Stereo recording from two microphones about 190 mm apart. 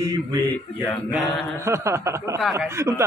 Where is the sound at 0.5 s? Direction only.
10° left (ahead or behind).